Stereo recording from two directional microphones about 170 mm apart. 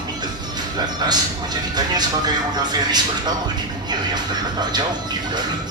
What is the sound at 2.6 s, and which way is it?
Speech, 25° right (ahead or behind).